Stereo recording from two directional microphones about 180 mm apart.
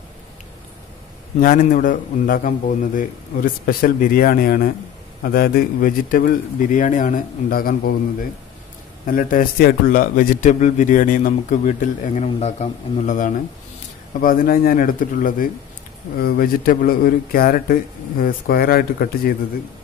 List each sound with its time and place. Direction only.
1.4 s a man's voice: 50° left (ahead or behind)